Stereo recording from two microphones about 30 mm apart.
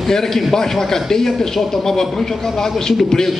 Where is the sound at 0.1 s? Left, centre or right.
Centre.